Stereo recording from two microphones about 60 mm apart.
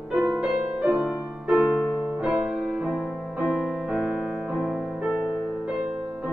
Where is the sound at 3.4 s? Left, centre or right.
Centre.